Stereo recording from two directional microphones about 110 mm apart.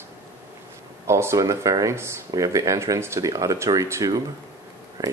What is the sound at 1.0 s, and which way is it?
Speech, 25° right (ahead or behind).